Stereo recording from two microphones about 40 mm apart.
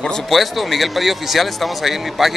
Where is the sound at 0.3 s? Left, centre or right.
Centre.